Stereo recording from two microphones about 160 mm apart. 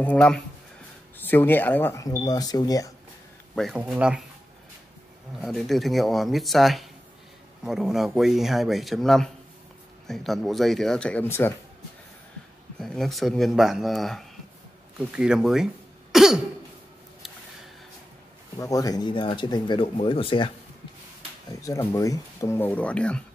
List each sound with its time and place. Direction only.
0.0 s speech: 5° left (ahead or behind); by 2.9 s 25° left (ahead or behind)
3.5 s speech: 5° right (ahead or behind)
5.4 s speech: centre (ahead or behind)
12.8 s speech: centre (ahead or behind)
18.6 s speech: 20° left (ahead or behind)
21.5 s speech: 20° left (ahead or behind)